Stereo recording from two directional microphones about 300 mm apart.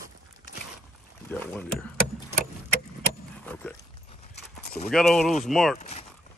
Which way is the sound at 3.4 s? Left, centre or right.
Centre.